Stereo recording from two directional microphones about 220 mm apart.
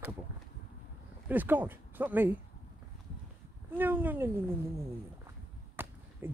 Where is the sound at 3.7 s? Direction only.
10° right (ahead or behind).